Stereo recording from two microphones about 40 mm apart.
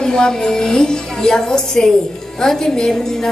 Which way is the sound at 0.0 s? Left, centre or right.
Centre.